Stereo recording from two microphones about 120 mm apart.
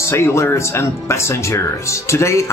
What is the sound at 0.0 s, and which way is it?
Speech, 25° left (ahead or behind).